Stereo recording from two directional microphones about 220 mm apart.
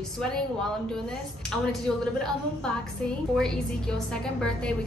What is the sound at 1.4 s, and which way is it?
A woman's voice, 5° left (ahead or behind).